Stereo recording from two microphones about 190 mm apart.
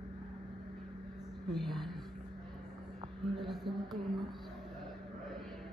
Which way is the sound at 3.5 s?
Centre (ahead or behind).